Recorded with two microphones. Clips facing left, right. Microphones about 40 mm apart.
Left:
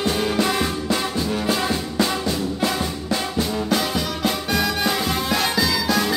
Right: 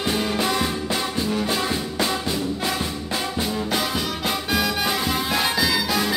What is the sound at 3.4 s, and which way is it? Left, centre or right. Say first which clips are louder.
Music: left 3 dB; centre.